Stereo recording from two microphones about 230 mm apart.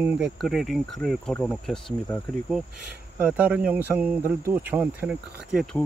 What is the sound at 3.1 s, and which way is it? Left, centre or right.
Speech, centre.